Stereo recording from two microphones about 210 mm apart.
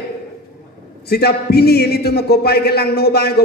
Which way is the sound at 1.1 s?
50° left (ahead or behind).